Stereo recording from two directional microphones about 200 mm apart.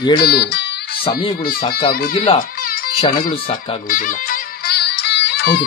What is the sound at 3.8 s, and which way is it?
Music, 45° left (ahead or behind).